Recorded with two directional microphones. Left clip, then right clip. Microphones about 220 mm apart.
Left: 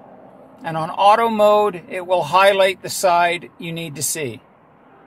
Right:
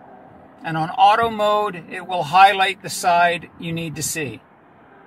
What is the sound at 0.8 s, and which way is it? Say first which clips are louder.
Speech: left 1 dB; 50° left (ahead or behind).